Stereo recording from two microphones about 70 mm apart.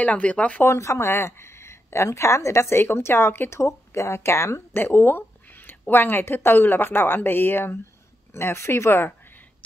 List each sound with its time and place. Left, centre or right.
0.0 s speech: centre
0.7 s speech: left